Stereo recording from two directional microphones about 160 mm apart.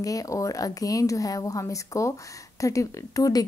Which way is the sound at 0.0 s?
20° left (ahead or behind).